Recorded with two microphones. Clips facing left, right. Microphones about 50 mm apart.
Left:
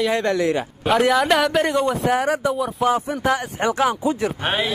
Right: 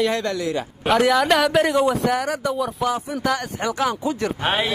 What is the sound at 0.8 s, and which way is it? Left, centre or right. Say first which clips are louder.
A man's voice: even; centre.